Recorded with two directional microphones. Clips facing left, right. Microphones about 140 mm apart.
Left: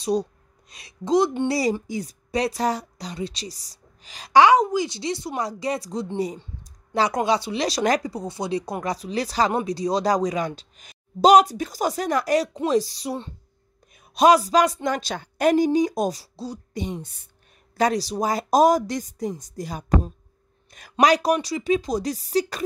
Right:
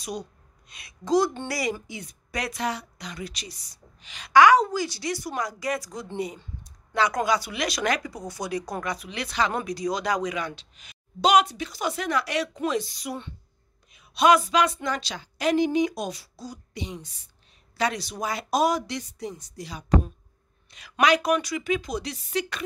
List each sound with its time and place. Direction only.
0.0 s a sound: 35° left (ahead or behind)
1.0 s a woman's voice: 20° left (ahead or behind)
1.5 s speech: 35° left (ahead or behind)
16.7 s speech: 50° left (ahead or behind)
17.7 s speech: 40° left (ahead or behind)
21.0 s speech: 35° left (ahead or behind)